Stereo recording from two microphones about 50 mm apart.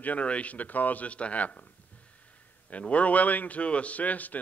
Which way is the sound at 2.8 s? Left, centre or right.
Left.